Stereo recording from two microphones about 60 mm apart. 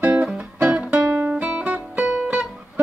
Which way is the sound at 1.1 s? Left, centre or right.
Right.